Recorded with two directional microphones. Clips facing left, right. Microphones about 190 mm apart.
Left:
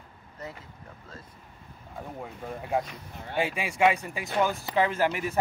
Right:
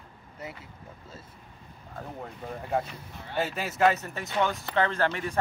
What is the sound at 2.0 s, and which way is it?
Speech, 5° left (ahead or behind).